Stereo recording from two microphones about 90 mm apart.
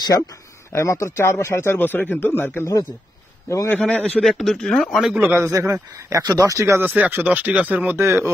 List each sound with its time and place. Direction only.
0.7 s speech: 35° left (ahead or behind)
3.4 s a man's voice: 35° left (ahead or behind)
3.7 s speech: 10° left (ahead or behind)
5.1 s speech: 20° right (ahead or behind)
5.5 s speech: 35° right (ahead or behind)